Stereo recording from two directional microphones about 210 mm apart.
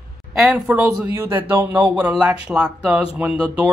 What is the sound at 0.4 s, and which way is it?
A man's voice, 5° right (ahead or behind).